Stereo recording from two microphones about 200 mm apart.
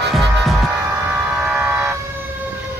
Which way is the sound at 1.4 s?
5° right (ahead or behind).